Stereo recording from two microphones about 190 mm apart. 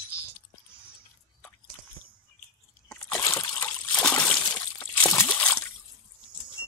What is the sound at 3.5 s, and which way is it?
Water, 5° left (ahead or behind).